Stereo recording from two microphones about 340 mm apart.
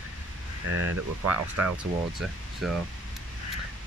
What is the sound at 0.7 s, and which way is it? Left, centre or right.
Speech, right.